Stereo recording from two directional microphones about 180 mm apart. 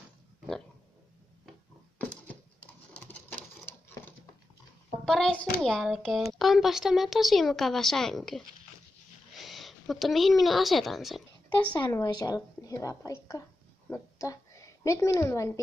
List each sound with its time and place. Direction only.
2.9 s a sound: 10° left (ahead or behind)
5.0 s speech: 5° left (ahead or behind)
11.8 s a woman's voice: 20° left (ahead or behind)